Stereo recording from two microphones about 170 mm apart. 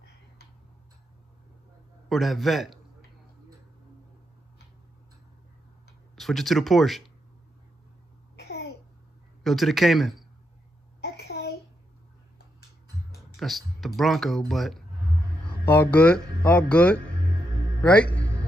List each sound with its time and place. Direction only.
2.0 s a man's voice: centre (ahead or behind)
6.1 s speech: centre (ahead or behind)
8.4 s a sound: 70° left (ahead or behind)
9.4 s speech: centre (ahead or behind)
11.0 s a sound: 70° left (ahead or behind)
13.1 s speech: centre (ahead or behind)